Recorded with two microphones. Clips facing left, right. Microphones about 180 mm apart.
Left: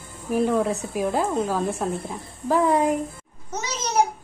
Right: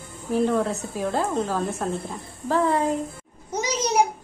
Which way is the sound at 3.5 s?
10° right (ahead or behind).